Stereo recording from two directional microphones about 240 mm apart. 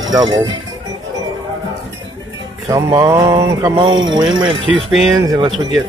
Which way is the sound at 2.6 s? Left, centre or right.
Centre.